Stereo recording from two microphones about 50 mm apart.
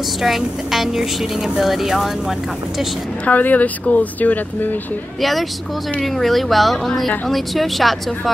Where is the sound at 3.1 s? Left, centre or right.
Left.